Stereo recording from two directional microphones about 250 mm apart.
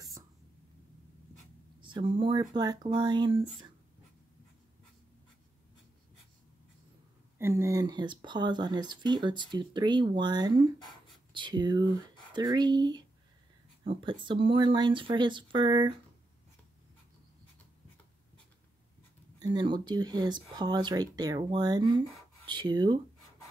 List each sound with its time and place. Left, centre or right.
1.8 s speech: centre
7.3 s speech: centre
19.4 s speech: centre